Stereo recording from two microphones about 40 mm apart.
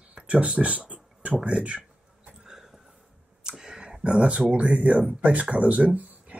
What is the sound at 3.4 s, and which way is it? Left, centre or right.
Clicking, centre.